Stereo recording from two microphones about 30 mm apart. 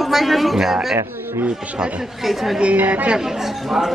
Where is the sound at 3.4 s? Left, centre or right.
Centre.